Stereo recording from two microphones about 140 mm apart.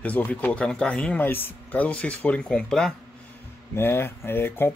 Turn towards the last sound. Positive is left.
turn(degrees=15)  # may be behind; listen again after turning